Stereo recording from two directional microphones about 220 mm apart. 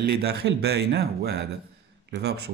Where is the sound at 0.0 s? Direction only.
45° right (ahead or behind).